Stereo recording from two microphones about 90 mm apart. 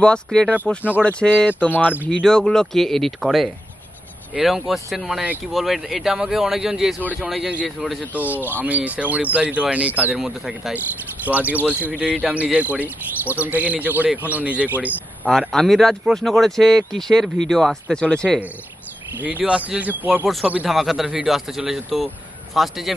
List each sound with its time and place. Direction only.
0.0 s speech: 10° left (ahead or behind)
8.2 s speech: 20° right (ahead or behind)
10.1 s speech: 5° right (ahead or behind)
11.2 s speech: 15° right (ahead or behind)
15.2 s speech: centre (ahead or behind)
19.1 s speech: 15° right (ahead or behind)
20.6 s speech: centre (ahead or behind)